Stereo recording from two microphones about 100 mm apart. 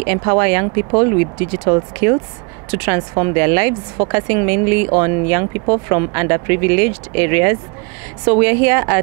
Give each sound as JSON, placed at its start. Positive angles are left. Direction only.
{"t": 0.0, "sound": "speech", "side_deg": -25}